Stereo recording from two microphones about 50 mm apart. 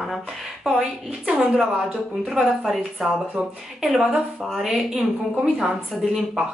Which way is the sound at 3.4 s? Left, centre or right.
Centre.